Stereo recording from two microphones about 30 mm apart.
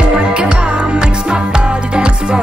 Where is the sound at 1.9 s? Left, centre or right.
Right.